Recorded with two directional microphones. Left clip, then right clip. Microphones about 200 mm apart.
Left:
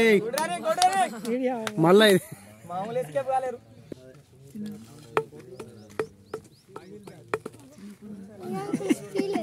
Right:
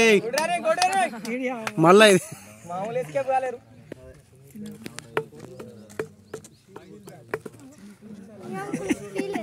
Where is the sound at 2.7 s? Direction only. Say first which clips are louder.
Right 1 dB; 40° right (ahead or behind).